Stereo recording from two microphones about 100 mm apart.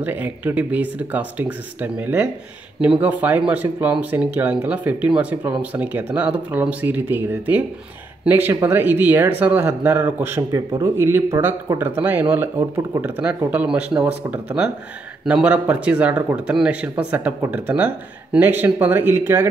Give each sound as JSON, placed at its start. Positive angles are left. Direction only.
{"t": 0.0, "sound": "speech", "side_deg": -20}
{"t": 11.8, "sound": "speech", "side_deg": -20}
{"t": 12.5, "sound": "speech", "side_deg": -40}
{"t": 13.0, "sound": "speech", "side_deg": -15}